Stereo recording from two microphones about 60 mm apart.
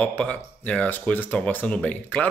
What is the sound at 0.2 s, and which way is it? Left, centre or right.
A man's voice, centre.